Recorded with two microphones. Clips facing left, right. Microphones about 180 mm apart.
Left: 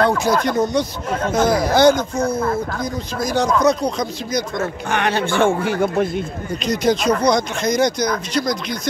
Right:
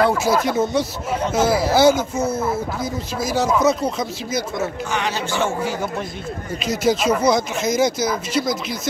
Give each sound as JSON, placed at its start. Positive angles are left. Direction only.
{"t": 0.0, "sound": "speech", "side_deg": -5}
{"t": 4.8, "sound": "speech", "side_deg": 60}
{"t": 6.6, "sound": "speech", "side_deg": -5}